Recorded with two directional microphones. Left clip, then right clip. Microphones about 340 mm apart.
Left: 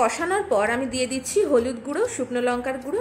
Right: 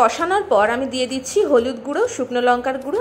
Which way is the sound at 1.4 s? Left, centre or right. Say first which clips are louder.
Right 4 dB; centre.